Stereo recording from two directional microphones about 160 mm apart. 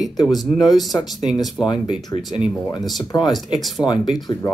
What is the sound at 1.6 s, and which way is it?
Speech, 25° left (ahead or behind).